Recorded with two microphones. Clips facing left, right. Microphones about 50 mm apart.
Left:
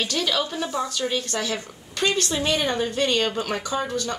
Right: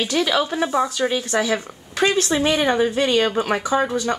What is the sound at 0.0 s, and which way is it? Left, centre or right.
A woman's voice, centre.